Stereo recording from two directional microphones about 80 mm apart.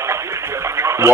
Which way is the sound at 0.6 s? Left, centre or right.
Right.